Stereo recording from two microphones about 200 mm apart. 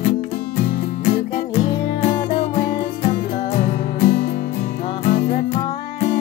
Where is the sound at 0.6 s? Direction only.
35° left (ahead or behind).